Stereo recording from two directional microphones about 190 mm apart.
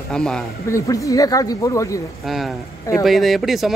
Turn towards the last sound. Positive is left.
turn(degrees=0)  # may be behind; listen again after turning